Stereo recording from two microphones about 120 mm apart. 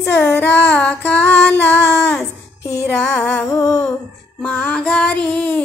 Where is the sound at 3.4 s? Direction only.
30° left (ahead or behind).